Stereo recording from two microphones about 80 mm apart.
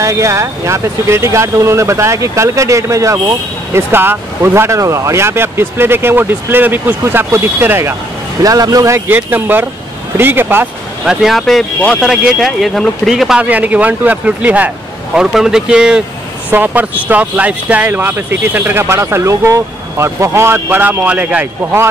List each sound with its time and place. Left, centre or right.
0.0 s speech: right
3.3 s speech: right
8.4 s speech: right
9.0 s speech: right
11.1 s speech: centre
11.8 s speech: centre
12.1 s speech: centre
13.4 s speech: centre
15.1 s speech: centre
16.4 s speech: right